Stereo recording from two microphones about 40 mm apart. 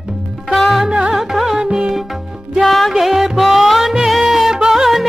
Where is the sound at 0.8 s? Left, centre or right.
Centre.